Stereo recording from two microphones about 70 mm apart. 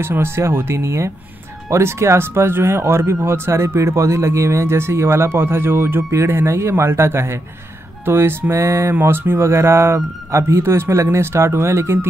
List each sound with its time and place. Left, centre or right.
0.0 s speech: right